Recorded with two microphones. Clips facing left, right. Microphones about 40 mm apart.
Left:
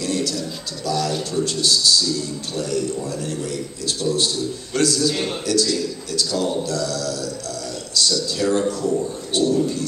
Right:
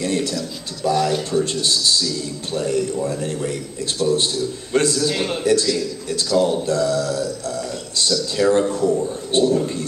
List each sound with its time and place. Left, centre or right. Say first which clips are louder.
0.0 s a sound: right 2 dB; right
0.8 s a man's voice: right 4 dB; right
4.0 s a man's voice: right 3 dB; centre
5.1 s a man's voice: right 2 dB; centre
5.4 s a man's voice: right 4 dB; right